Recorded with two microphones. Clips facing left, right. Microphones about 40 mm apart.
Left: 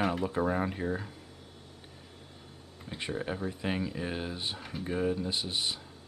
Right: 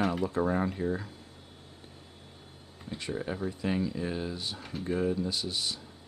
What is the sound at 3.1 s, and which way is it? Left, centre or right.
Speech, centre.